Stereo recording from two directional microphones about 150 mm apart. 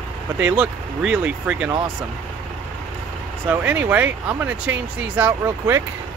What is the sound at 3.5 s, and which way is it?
Speech, 10° right (ahead or behind).